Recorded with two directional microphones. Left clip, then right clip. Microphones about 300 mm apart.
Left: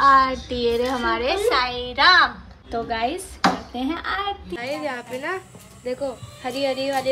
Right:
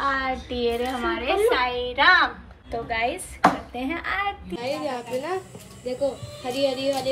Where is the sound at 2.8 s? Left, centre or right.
Centre.